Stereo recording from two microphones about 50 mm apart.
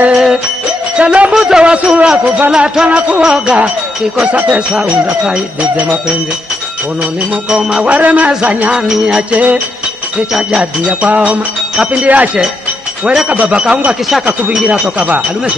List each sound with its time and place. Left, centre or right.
0.1 s music: centre
0.9 s speech: right
7.8 s speech: right
13.3 s speech: right